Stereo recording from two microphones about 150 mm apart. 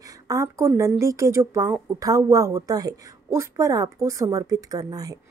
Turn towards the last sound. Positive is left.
turn(degrees=-25)  # may be behind; listen again after turning